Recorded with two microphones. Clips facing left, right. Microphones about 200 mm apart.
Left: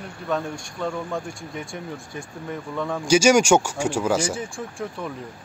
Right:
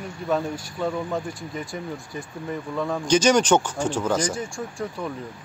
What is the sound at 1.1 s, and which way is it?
Speech, centre (ahead or behind).